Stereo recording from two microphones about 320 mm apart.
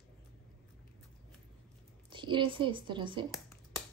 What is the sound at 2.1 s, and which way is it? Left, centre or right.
Speech, centre.